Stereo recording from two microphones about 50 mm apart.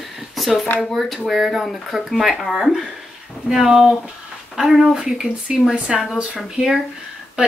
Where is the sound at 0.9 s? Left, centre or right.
Centre.